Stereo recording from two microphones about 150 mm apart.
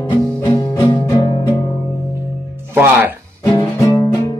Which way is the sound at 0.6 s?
30° left (ahead or behind).